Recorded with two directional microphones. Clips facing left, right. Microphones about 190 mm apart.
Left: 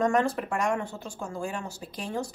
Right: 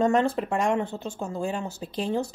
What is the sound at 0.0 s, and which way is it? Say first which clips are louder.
Speech: right 3 dB; 25° right (ahead or behind).